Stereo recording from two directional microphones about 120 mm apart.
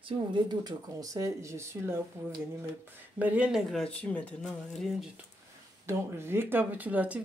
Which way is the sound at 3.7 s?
Centre (ahead or behind).